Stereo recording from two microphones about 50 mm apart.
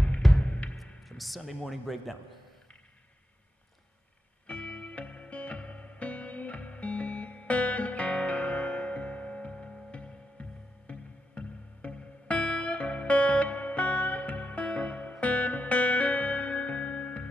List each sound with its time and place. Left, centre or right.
0.4 s music: left
1.0 s a man's voice: centre
4.5 s music: left